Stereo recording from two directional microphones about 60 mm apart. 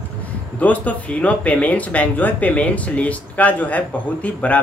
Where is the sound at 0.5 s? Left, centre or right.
Left.